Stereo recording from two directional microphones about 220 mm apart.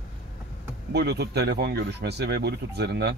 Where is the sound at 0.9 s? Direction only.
50° right (ahead or behind).